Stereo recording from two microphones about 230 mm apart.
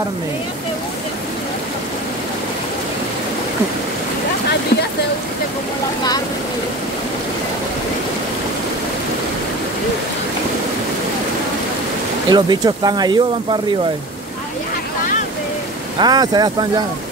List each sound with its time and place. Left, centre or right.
12.3 s speech: centre
16.0 s speech: centre